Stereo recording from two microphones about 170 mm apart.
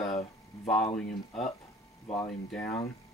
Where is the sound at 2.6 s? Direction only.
15° left (ahead or behind).